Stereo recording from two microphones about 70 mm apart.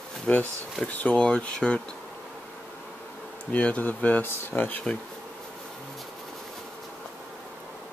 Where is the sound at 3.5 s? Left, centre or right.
Centre.